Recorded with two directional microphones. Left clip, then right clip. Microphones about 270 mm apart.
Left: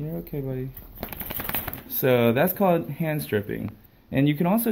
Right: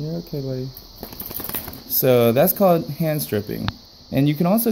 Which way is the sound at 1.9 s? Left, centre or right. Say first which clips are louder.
Right 5 dB; right.